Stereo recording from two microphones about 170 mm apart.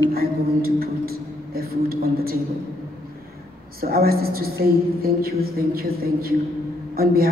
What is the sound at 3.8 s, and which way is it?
A woman's voice, 65° right (ahead or behind).